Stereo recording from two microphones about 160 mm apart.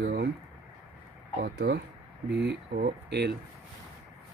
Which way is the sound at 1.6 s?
90° right.